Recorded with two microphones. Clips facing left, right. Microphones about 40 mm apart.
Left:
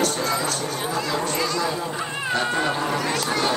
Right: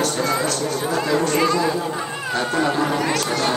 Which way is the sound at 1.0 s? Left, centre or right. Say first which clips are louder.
Right 6 dB; centre.